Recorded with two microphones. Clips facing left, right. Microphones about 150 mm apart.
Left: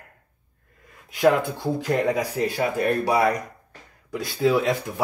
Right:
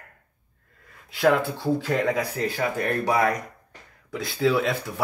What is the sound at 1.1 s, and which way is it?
Speech, 20° left (ahead or behind).